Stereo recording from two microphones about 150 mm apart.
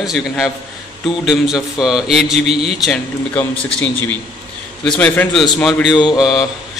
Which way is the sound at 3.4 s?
10° left (ahead or behind).